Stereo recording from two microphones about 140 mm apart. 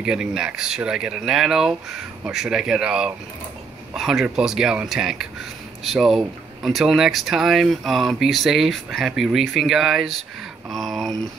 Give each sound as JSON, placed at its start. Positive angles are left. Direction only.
{"t": 0.0, "sound": "speech", "side_deg": -5}